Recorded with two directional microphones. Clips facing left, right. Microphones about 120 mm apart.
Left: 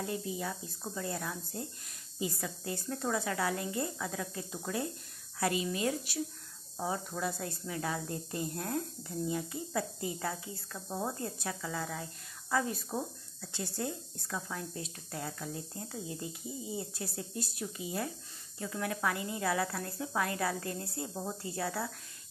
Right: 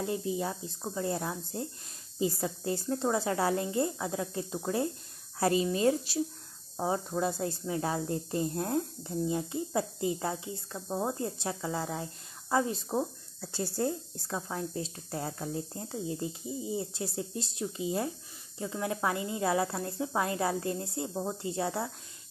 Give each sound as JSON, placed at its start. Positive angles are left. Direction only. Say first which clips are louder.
{"t": 0.0, "sound": "speech", "louder": "right 5 dB", "side_deg": -25}